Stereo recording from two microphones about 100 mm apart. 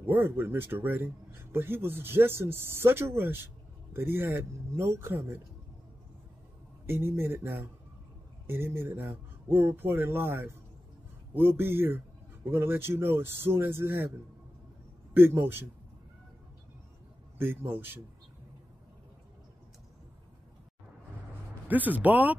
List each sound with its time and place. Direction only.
0.0 s speech: 20° right (ahead or behind)
6.9 s speech: 25° right (ahead or behind)
17.4 s speech: 25° right (ahead or behind)
21.6 s speech: 15° right (ahead or behind)